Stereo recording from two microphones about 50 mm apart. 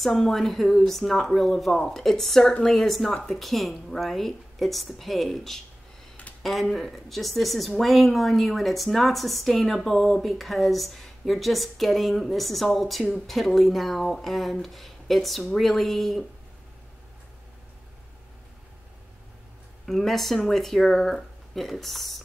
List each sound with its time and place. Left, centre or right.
0.0 s a woman's voice: centre
2.9 s a woman's voice: centre
19.9 s a woman's voice: centre